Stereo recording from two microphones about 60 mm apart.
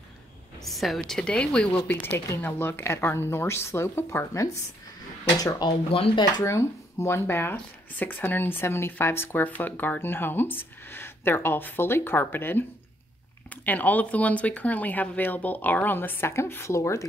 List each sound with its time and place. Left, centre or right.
0.7 s a woman's voice: centre
1.9 s speech: left
2.1 s a woman's voice: left
6.4 s a woman's voice: left